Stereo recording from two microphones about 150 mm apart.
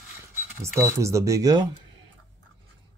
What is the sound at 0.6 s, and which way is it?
Speech, 20° right (ahead or behind).